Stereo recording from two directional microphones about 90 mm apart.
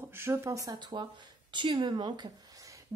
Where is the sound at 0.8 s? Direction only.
55° right (ahead or behind).